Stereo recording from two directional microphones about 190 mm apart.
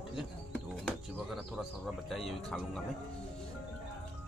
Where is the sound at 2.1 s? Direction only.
Centre (ahead or behind).